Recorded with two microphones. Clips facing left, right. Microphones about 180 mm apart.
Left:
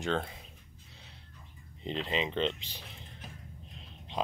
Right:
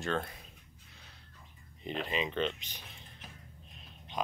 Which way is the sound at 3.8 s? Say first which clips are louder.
Left 2 dB; 30° left (ahead or behind).